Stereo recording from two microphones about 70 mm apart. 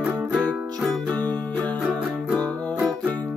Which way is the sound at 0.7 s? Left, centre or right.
Centre.